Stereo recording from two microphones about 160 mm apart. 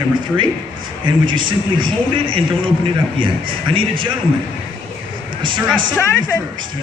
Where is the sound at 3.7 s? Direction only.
30° right (ahead or behind).